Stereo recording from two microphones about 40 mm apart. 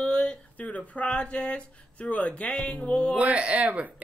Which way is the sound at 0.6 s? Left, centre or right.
Left.